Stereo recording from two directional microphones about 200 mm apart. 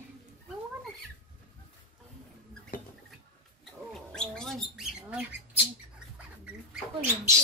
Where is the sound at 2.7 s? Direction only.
45° left (ahead or behind).